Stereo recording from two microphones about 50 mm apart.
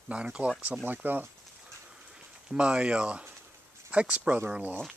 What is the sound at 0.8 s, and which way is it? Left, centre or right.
Speech, right.